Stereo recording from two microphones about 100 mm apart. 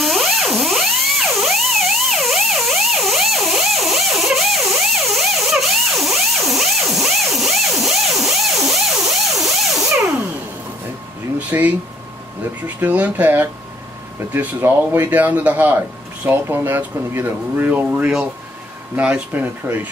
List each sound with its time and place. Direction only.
0.0 s theremin: centre (ahead or behind)
11.3 s a sound: 15° right (ahead or behind)
12.6 s speech: 15° right (ahead or behind)